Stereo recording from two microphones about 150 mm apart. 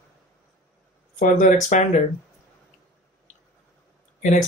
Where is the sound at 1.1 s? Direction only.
60° left (ahead or behind).